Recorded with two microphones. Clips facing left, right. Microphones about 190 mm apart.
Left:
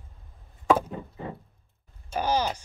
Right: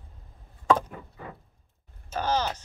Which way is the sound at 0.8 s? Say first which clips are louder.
Left 6 dB; 25° left (ahead or behind).